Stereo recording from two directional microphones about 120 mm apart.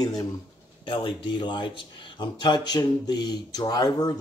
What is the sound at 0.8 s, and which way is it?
Speech, 45° left (ahead or behind).